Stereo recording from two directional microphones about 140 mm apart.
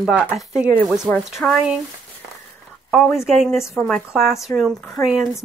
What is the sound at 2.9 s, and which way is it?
A woman's voice, centre (ahead or behind).